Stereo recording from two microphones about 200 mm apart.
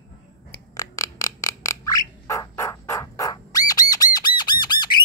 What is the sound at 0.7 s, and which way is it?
Bird, 15° left (ahead or behind).